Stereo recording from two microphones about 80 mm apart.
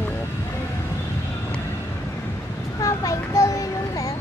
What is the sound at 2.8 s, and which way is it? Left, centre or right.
Child singing, left.